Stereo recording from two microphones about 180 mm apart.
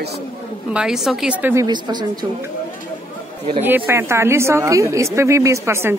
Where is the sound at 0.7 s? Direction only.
5° right (ahead or behind).